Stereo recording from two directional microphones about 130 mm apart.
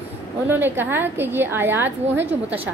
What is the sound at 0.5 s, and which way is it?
A woman's voice, 15° right (ahead or behind).